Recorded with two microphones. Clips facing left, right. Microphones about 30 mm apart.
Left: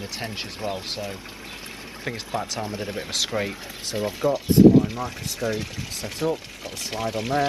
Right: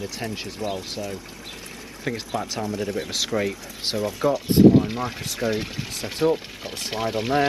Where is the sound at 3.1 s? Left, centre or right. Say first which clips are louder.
Left 2 dB; centre.